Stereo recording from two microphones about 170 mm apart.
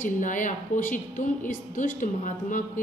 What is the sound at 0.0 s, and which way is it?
A woman's voice, 50° left (ahead or behind).